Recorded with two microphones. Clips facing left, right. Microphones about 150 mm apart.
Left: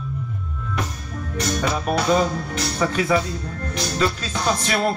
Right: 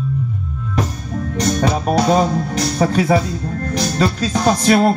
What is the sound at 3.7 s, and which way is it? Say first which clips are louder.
Music: right 4 dB; 40° right (ahead or behind).